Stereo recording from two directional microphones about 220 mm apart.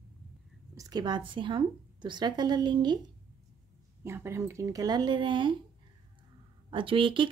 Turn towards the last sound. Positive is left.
turn(degrees=-25)  # may be behind; listen again after turning